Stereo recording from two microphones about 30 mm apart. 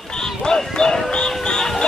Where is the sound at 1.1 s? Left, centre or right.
Left.